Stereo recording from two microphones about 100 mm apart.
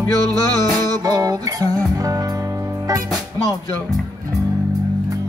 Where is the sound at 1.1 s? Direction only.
35° right (ahead or behind).